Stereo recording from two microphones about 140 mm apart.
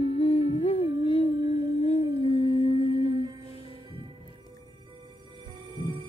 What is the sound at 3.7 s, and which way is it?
Music, 40° right (ahead or behind).